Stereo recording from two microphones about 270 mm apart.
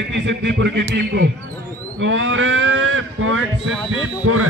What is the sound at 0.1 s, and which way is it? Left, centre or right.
Speech, right.